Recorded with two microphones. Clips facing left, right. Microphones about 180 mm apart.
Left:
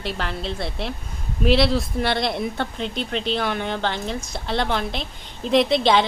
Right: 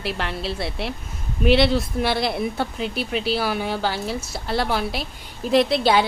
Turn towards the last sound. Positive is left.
turn(degrees=-5)  # may be behind; listen again after turning